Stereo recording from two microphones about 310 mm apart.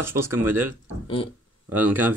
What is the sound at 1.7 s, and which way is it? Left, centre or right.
Speech, centre.